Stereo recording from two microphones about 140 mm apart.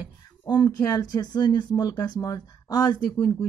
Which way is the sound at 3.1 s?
15° left (ahead or behind).